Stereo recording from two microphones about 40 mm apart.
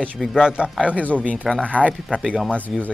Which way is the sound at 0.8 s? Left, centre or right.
Left.